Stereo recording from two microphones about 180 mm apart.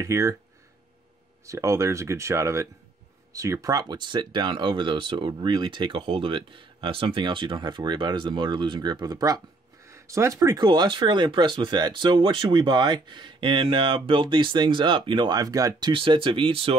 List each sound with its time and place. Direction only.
0.0 s speech: 15° right (ahead or behind)
1.4 s speech: 15° right (ahead or behind)